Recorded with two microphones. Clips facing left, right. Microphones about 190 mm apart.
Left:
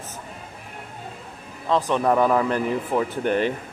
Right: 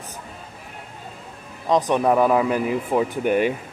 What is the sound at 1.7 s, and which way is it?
Speech, 15° right (ahead or behind).